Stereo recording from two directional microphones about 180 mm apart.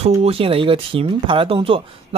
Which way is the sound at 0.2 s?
30° right (ahead or behind).